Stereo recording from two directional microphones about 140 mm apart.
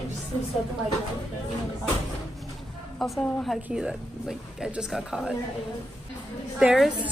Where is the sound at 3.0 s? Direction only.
5° left (ahead or behind).